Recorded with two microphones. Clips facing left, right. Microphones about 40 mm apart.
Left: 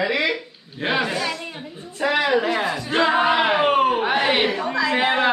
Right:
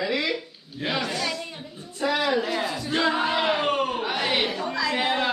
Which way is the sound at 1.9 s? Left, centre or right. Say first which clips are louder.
Left 4 dB; left.